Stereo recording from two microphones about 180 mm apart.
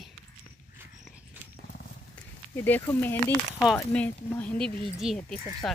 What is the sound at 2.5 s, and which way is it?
Speech, 10° left (ahead or behind).